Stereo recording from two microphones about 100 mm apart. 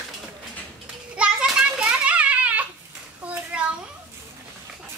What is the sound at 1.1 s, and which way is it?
Children playing, 10° right (ahead or behind).